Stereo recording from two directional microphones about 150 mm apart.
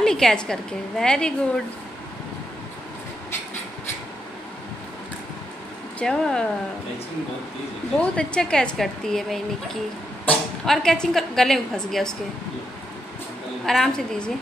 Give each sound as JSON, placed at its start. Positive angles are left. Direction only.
{"t": 0.0, "sound": "a woman's voice", "side_deg": 5}
{"t": 5.9, "sound": "a woman's voice", "side_deg": 5}
{"t": 8.0, "sound": "a woman's voice", "side_deg": 5}
{"t": 13.7, "sound": "a woman's voice", "side_deg": 5}